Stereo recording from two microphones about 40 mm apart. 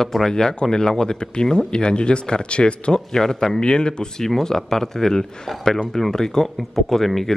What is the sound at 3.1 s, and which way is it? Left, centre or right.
Speech, centre.